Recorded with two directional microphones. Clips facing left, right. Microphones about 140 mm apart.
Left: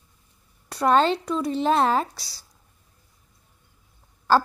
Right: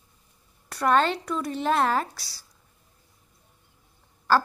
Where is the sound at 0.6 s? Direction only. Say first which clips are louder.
Left 3 dB; 25° left (ahead or behind).